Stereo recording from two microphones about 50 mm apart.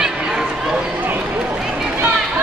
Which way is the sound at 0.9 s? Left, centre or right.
Right.